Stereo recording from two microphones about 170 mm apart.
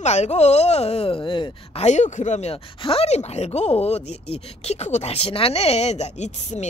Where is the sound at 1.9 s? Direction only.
45° left (ahead or behind).